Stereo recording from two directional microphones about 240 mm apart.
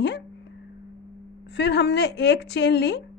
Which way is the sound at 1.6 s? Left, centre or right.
Left.